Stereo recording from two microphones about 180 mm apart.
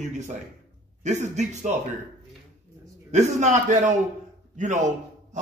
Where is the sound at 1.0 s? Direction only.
40° right (ahead or behind).